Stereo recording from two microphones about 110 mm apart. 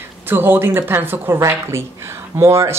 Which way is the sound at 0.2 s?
20° right (ahead or behind).